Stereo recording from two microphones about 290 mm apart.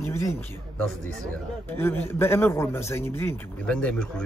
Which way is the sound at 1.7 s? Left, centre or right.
Centre.